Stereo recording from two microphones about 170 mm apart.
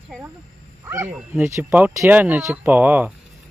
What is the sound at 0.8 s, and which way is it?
Speech, 15° right (ahead or behind).